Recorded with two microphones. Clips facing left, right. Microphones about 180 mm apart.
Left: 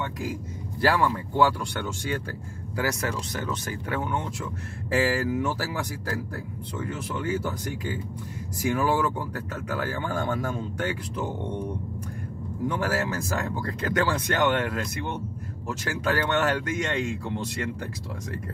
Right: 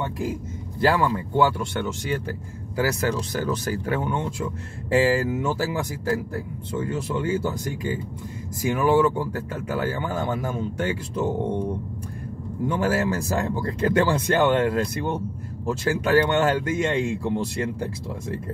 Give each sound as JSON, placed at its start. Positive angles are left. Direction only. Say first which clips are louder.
{"t": 0.7, "sound": "speech", "louder": "right 2 dB", "side_deg": -25}
{"t": 2.8, "sound": "speech", "louder": "right 5 dB", "side_deg": -30}
{"t": 12.8, "sound": "speech", "louder": "right 4 dB", "side_deg": -25}